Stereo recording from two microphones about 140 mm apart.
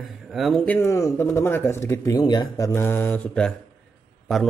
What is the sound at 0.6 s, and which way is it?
A man's voice, 15° left (ahead or behind).